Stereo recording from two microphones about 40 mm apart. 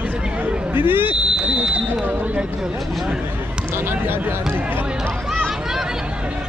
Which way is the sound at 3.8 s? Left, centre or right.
Right.